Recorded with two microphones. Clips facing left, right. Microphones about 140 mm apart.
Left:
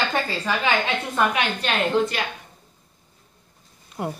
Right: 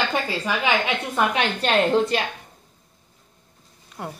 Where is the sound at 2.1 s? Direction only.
30° right (ahead or behind).